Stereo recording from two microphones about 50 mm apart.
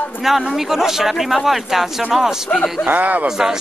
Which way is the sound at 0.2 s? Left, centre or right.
Centre.